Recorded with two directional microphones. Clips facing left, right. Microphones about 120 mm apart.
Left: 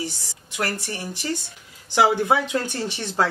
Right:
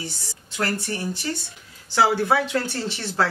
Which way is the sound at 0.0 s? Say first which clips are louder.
Left 4 dB; 15° left (ahead or behind).